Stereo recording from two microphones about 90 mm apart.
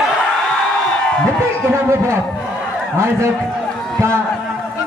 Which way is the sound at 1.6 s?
30° right (ahead or behind).